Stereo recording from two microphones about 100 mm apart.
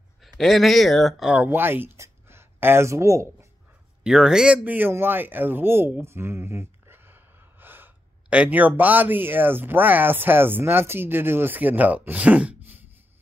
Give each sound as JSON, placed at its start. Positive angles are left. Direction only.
{"t": 0.2, "sound": "speech", "side_deg": 0}
{"t": 1.3, "sound": "speech", "side_deg": -20}
{"t": 4.0, "sound": "speech", "side_deg": -5}
{"t": 4.6, "sound": "speech", "side_deg": -20}